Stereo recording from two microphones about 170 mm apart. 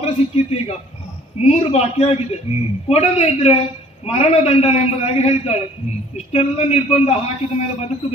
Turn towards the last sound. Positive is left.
turn(degrees=40)  # may be behind; listen again after turning